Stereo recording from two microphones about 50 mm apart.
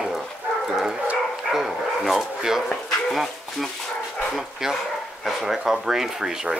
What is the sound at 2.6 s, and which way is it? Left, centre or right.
Speech, centre.